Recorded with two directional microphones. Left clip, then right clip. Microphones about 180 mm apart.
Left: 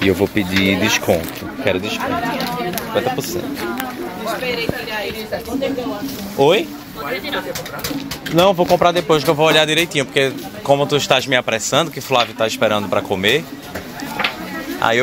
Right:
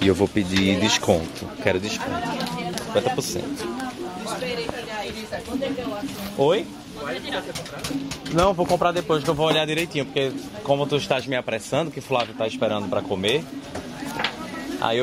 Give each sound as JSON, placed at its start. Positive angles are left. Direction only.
{"t": 0.1, "sound": "speech", "side_deg": -15}
{"t": 6.4, "sound": "speech", "side_deg": 25}
{"t": 8.4, "sound": "speech", "side_deg": 10}